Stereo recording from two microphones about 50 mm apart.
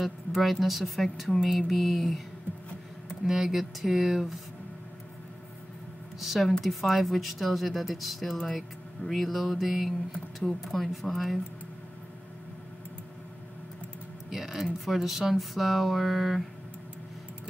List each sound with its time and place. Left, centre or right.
0.0 s speech: centre
3.3 s speech: centre
6.1 s speech: centre
14.3 s speech: centre